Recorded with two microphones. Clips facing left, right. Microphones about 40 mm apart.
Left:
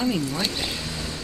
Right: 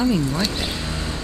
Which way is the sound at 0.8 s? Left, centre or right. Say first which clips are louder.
Right 4 dB; right.